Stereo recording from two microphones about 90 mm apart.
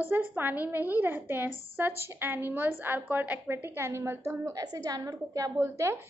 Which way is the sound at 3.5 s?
25° right (ahead or behind).